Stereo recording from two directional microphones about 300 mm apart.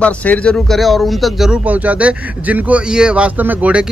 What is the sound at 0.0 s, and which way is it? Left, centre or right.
A man's voice, centre.